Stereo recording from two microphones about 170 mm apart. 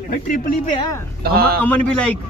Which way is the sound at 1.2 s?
65° right (ahead or behind).